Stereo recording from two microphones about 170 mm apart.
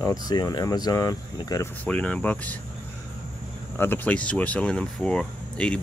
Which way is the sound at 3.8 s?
10° left (ahead or behind).